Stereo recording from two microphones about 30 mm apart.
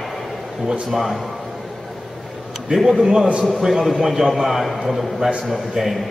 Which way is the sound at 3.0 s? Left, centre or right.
Centre.